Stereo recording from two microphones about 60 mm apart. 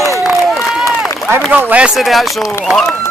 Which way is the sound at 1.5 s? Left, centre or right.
Right.